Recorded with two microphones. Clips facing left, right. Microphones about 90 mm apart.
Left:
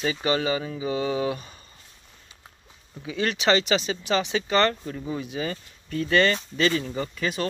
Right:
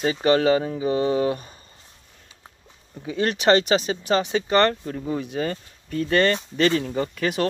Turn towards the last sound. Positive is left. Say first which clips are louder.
# right 4 dB
turn(degrees=-40)  # may be behind; listen again after turning